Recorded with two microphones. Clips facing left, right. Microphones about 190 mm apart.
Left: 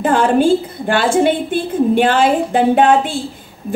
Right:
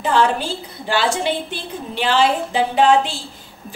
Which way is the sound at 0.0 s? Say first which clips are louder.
Left 6 dB; 50° left (ahead or behind).